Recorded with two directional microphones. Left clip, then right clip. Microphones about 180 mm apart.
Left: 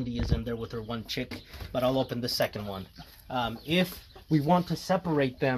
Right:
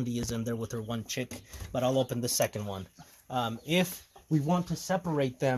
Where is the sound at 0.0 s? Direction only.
90° right.